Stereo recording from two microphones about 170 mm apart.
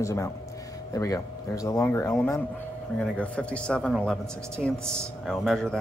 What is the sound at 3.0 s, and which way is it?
Speech, 5° left (ahead or behind).